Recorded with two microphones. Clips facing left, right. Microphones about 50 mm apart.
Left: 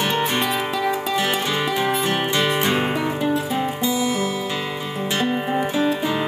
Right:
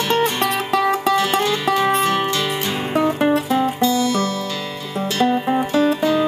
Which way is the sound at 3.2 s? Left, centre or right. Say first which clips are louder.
Right 5 dB; right.